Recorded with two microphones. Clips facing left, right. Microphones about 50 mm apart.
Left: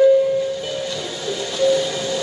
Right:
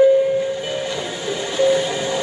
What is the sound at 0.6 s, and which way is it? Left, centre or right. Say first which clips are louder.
Train: right 2 dB; right.